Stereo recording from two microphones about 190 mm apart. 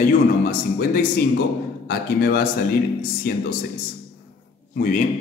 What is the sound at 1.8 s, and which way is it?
A man's voice, 55° left (ahead or behind).